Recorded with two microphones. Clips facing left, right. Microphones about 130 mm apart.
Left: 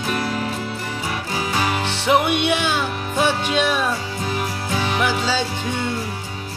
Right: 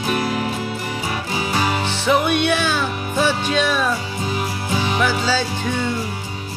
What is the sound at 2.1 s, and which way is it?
Music, 20° left (ahead or behind).